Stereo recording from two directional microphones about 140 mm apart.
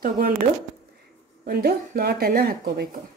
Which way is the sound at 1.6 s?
90° right.